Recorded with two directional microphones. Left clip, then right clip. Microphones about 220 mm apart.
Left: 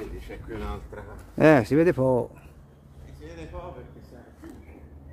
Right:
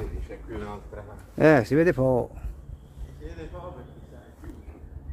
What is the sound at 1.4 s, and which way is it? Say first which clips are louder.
Speech: left 1 dB; 10° left (ahead or behind).